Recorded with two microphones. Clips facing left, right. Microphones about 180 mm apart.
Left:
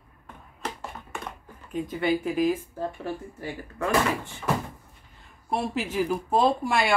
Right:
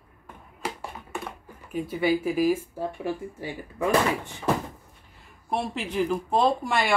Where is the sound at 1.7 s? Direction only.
10° right (ahead or behind).